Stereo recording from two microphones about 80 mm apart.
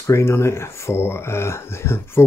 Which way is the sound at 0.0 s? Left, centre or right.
Left.